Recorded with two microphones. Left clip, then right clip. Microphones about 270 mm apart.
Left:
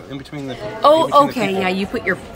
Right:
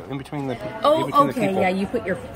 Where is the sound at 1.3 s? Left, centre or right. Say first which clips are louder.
Left 2 dB; centre.